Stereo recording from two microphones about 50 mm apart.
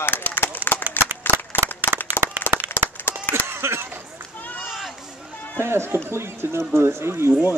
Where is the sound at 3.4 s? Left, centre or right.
Right.